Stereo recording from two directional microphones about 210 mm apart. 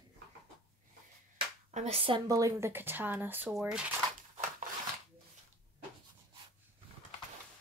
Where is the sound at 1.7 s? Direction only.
30° right (ahead or behind).